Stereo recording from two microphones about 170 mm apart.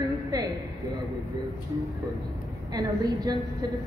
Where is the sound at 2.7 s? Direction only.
20° right (ahead or behind).